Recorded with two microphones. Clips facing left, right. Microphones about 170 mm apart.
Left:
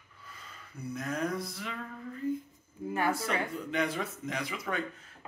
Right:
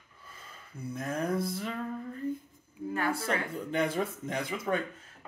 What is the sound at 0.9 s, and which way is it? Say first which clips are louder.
Chopping: right 2 dB; 30° right (ahead or behind).